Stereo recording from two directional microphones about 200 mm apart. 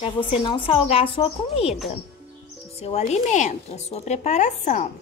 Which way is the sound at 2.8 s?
35° left (ahead or behind).